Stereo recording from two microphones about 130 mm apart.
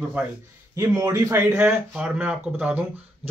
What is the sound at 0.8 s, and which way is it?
Speech, 25° right (ahead or behind).